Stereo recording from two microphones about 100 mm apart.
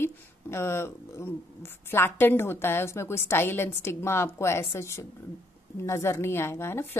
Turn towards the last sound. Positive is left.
turn(degrees=25)  # may be behind; listen again after turning